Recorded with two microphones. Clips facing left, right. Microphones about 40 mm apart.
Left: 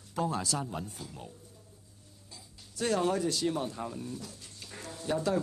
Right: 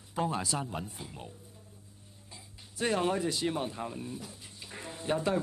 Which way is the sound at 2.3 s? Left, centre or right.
Right.